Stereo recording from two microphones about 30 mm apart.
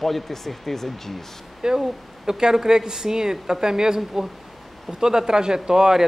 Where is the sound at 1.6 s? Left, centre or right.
Right.